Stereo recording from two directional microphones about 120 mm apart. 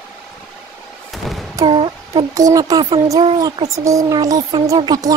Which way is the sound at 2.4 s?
30° right (ahead or behind).